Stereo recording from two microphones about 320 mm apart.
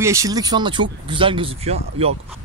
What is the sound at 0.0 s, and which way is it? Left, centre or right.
Speech, centre.